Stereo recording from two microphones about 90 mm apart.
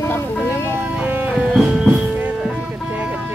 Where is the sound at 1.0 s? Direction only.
20° right (ahead or behind).